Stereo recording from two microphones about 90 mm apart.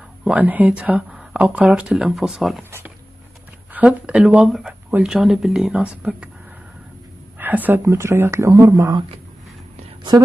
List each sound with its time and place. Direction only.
0.3 s speech: 20° right (ahead or behind); by 2.6 s centre (ahead or behind)
3.7 s speech: 10° right (ahead or behind)
4.5 s speech: centre (ahead or behind)
7.3 s speech: 20° right (ahead or behind); by 8.9 s 35° right (ahead or behind)